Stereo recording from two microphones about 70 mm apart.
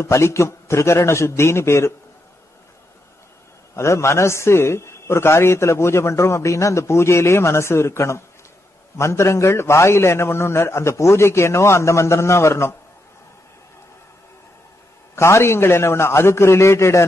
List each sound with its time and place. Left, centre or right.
0.0 s a man's voice: left
3.7 s a man's voice: left
15.1 s a man's voice: left